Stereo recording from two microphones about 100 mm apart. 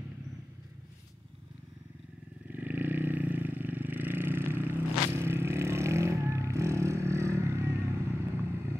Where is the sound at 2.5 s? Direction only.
20° right (ahead or behind).